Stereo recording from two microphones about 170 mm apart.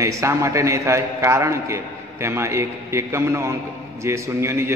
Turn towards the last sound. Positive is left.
turn(degrees=-15)  # may be behind; listen again after turning